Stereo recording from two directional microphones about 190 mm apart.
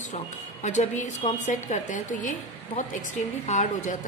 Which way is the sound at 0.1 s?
40° left (ahead or behind).